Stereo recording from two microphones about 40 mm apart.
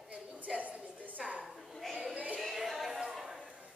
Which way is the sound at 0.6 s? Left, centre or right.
Right.